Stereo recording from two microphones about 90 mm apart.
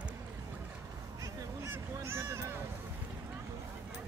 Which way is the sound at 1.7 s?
25° right (ahead or behind).